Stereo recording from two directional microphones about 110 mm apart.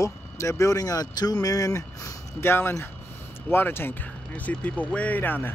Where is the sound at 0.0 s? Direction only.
30° left (ahead or behind).